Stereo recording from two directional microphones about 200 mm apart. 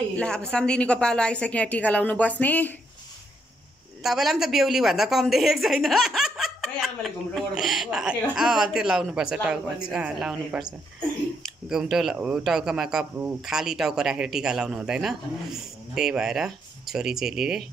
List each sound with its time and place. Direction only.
0.1 s a woman's voice: 5° left (ahead or behind)
4.0 s a woman's voice: centre (ahead or behind)
11.7 s a woman's voice: centre (ahead or behind)